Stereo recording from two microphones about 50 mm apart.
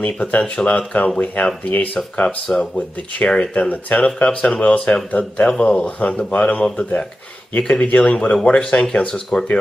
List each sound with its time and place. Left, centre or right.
0.2 s speech: left
2.1 s speech: centre